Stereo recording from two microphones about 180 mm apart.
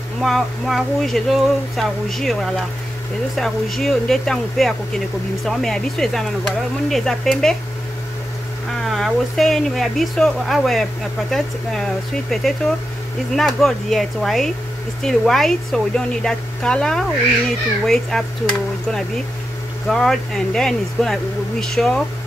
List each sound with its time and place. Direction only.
0.2 s speech: centre (ahead or behind)
8.8 s speech: centre (ahead or behind)